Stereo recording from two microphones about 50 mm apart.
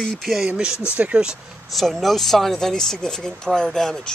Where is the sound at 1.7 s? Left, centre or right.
Centre.